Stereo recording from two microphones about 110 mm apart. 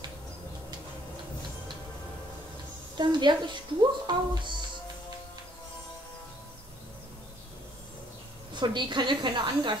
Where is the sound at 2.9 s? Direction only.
45° right (ahead or behind).